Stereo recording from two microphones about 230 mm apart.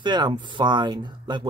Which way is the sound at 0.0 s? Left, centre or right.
Centre.